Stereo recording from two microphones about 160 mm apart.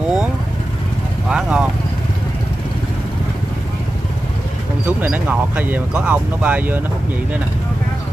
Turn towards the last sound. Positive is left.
turn(degrees=-10)  # may be behind; listen again after turning